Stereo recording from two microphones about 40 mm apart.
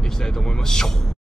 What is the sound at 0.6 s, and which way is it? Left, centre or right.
Speech, centre.